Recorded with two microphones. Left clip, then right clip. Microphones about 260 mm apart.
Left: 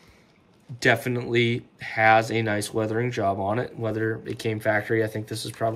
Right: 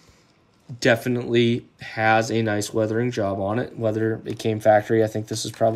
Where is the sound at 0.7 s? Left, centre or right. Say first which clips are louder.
Right 2 dB; centre.